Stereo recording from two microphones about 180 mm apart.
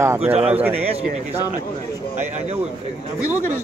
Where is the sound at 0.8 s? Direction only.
35° right (ahead or behind).